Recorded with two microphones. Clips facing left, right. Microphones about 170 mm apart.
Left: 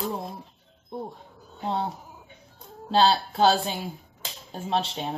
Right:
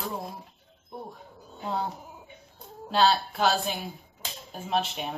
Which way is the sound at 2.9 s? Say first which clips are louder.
Left 2 dB; 30° left (ahead or behind).